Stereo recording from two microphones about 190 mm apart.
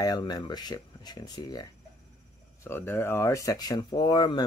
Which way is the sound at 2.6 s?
10° left (ahead or behind).